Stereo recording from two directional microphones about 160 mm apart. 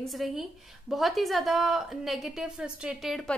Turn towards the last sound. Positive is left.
turn(degrees=0)  # may be behind; listen again after turning